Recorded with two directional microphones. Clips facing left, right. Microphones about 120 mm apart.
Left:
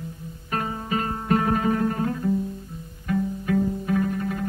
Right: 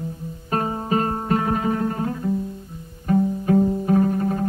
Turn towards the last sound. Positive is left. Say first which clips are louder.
# right 5 dB
turn(degrees=-35)  # may be behind; listen again after turning